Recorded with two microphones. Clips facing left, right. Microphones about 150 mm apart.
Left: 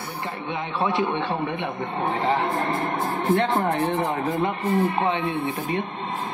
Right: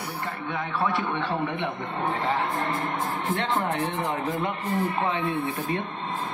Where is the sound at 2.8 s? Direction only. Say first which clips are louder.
Left 3 dB; 45° left (ahead or behind).